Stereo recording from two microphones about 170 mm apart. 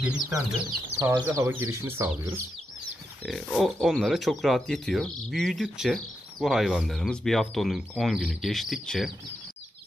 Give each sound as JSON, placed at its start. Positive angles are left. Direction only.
{"t": 0.0, "sound": "speech", "side_deg": -5}
{"t": 3.3, "sound": "speech", "side_deg": 0}